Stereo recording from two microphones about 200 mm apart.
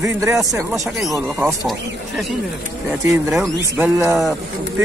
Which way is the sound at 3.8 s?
5° right (ahead or behind).